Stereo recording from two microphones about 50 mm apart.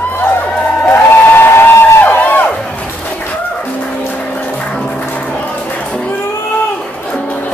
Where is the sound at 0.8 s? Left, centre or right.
Left.